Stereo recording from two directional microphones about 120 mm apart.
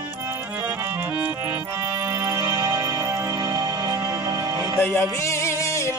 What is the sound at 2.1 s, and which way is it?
Music, 20° right (ahead or behind).